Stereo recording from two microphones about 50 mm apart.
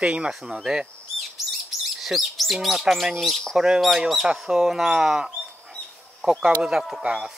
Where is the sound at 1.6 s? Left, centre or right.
Centre.